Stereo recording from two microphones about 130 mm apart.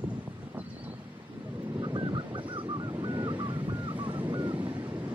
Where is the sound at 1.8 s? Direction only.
35° right (ahead or behind).